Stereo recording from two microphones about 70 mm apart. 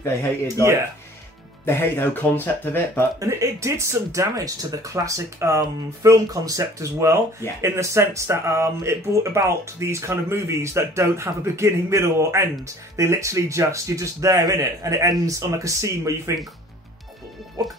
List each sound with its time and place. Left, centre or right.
1.7 s speech: left
3.2 s speech: right
4.4 s speech: right
17.6 s speech: right